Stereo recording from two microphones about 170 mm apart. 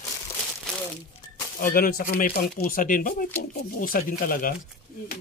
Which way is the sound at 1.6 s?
60° left (ahead or behind).